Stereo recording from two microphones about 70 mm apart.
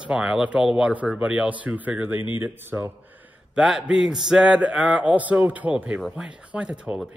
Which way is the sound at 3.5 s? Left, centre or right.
Centre.